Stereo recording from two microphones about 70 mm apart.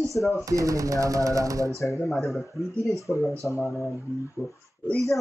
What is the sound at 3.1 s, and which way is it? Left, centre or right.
Speech, left.